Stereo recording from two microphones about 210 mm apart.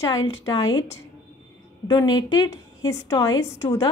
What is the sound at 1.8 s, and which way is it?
A woman's voice, 20° left (ahead or behind).